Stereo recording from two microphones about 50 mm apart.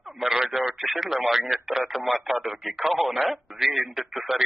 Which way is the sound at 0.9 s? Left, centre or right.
Centre.